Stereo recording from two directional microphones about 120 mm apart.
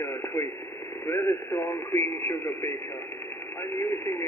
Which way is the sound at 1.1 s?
25° left (ahead or behind).